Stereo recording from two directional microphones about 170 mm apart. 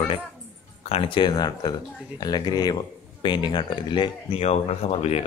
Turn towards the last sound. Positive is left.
turn(degrees=35)  # may be behind; listen again after turning